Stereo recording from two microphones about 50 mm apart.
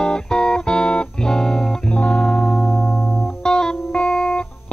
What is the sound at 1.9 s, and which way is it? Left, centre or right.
Music, left.